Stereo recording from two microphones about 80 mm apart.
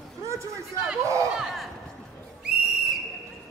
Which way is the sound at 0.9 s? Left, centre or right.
Centre.